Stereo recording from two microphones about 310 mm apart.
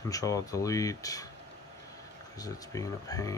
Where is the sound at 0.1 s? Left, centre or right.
Centre.